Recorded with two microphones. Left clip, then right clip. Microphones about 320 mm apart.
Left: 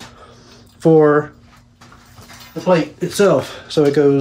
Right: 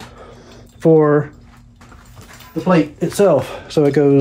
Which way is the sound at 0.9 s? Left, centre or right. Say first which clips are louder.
Left 1 dB; centre.